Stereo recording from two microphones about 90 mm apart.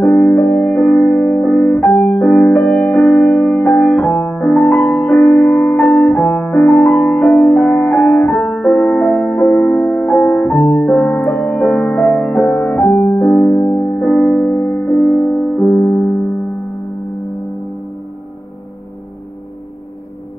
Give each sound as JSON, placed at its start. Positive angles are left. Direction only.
{"t": 0.1, "sound": "music", "side_deg": 20}
{"t": 2.0, "sound": "piano", "side_deg": 10}
{"t": 2.5, "sound": "music", "side_deg": 15}
{"t": 10.6, "sound": "music", "side_deg": 5}
{"t": 11.2, "sound": "music", "side_deg": 15}
{"t": 14.1, "sound": "music", "side_deg": 10}
{"t": 14.5, "sound": "music", "side_deg": 25}
{"t": 15.1, "sound": "music", "side_deg": 10}